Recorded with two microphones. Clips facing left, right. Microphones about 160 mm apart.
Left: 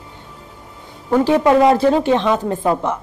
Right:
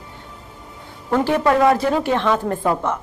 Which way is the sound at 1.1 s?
15° left (ahead or behind).